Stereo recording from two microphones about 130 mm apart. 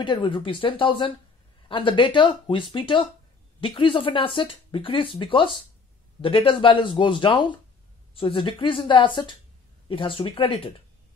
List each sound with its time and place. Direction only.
0.0 s speech: 40° left (ahead or behind)